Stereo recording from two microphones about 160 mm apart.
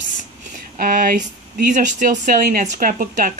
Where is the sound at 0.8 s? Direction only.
60° right (ahead or behind).